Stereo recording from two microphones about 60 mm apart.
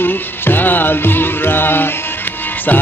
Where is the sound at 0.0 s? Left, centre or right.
Left.